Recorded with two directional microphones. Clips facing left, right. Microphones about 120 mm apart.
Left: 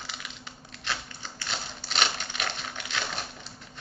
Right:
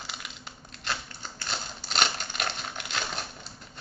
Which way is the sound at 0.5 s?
40° right (ahead or behind).